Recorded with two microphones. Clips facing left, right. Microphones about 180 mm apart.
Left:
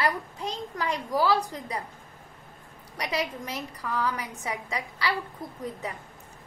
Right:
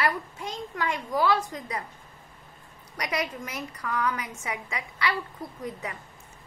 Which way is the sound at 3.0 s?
30° left (ahead or behind).